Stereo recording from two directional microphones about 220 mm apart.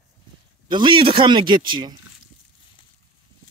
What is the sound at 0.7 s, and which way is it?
Speech, 20° right (ahead or behind).